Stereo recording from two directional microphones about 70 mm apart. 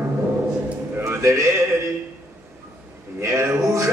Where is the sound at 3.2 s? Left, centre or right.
Right.